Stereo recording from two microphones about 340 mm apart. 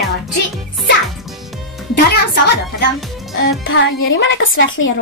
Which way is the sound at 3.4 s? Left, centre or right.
Left.